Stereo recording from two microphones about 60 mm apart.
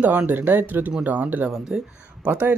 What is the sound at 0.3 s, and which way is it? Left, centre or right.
Speech, right.